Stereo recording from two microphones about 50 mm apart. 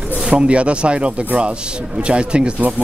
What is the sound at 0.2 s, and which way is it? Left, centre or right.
Speech, right.